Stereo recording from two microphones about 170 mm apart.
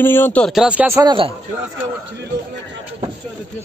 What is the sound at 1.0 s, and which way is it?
Speech, 30° right (ahead or behind).